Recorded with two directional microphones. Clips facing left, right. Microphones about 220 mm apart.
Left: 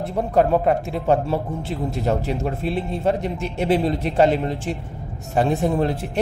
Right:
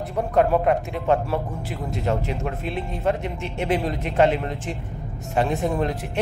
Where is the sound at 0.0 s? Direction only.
30° left (ahead or behind).